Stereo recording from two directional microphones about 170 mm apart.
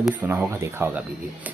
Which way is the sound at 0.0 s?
10° right (ahead or behind).